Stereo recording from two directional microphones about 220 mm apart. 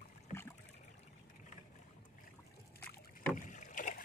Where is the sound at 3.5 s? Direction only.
35° left (ahead or behind).